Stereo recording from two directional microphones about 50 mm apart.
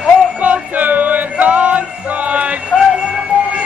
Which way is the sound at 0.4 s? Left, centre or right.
Right.